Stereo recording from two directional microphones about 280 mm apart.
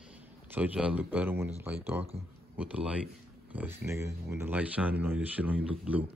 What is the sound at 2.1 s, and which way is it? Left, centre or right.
Speech, right.